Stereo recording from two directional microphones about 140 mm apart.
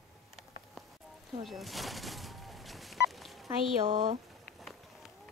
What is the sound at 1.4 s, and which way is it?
Speech, centre (ahead or behind).